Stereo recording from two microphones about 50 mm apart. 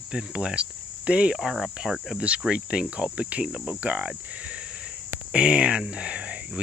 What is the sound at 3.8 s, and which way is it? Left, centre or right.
Speech, right.